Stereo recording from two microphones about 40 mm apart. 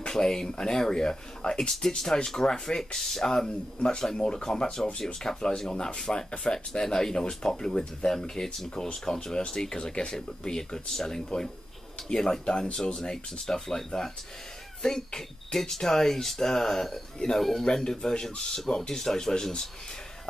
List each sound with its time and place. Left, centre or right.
0.1 s speech: centre
10.9 s speech: centre
12.1 s speech: left